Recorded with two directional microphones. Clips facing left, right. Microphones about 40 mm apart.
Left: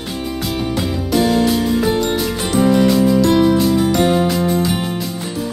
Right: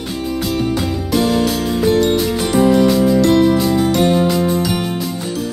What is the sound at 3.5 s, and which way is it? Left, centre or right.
Music, centre.